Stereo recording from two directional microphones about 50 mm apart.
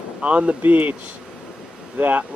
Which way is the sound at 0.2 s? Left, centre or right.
Right.